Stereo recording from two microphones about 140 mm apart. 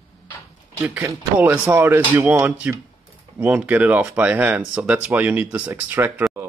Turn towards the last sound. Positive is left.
turn(degrees=-15)  # may be behind; listen again after turning